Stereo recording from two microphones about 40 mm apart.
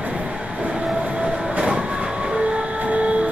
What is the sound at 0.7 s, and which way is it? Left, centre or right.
Train, right.